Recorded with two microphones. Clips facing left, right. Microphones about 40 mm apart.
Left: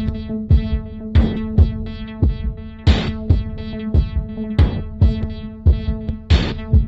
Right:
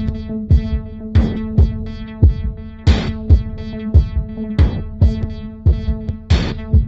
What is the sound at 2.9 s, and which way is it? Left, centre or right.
Music, left.